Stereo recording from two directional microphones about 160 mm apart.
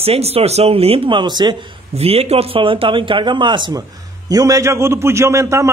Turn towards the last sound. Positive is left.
turn(degrees=-15)  # may be behind; listen again after turning